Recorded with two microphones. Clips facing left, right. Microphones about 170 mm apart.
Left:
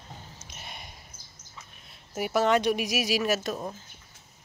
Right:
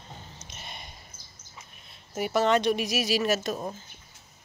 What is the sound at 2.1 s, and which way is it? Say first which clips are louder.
Speech: even; 5° left (ahead or behind).